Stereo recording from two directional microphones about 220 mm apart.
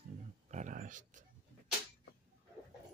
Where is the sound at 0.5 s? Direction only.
35° right (ahead or behind).